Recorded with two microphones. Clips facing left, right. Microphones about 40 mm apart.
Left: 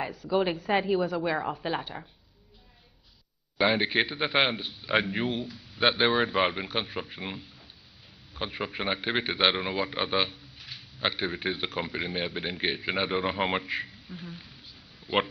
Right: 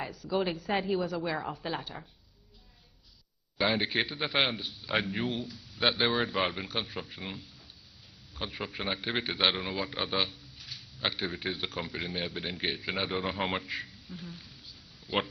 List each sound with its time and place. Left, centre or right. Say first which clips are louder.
0.2 s a woman's voice: left 4 dB; centre
3.5 s a man's voice: left 4 dB; centre